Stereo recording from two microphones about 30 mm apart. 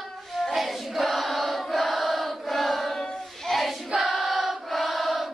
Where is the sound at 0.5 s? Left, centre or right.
Centre.